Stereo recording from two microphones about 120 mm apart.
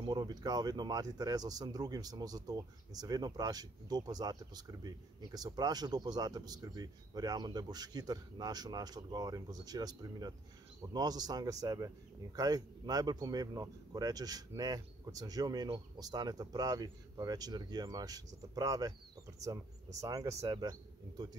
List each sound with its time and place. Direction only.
0.0 s speech: 35° right (ahead or behind)